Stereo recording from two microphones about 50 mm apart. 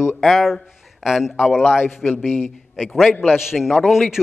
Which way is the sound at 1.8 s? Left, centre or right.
Left.